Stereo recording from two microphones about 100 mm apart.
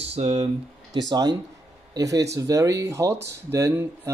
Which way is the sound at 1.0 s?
45° right (ahead or behind).